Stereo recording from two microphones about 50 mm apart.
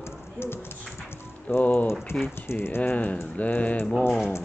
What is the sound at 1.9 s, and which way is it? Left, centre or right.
Speech, left.